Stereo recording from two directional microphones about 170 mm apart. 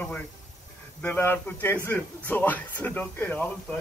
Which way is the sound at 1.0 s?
10° left (ahead or behind).